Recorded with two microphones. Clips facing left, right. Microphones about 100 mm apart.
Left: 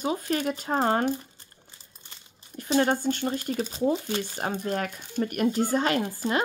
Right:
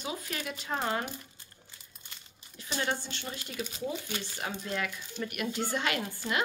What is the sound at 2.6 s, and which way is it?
Speech, 45° left (ahead or behind).